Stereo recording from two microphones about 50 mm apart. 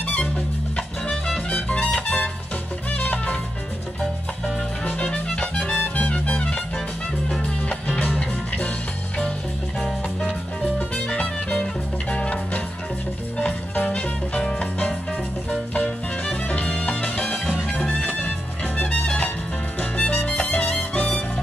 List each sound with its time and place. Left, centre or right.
1.5 s music: left
4.8 s music: left
7.2 s music: centre
7.6 s music: left
11.1 s music: left
16.4 s music: left
18.8 s music: left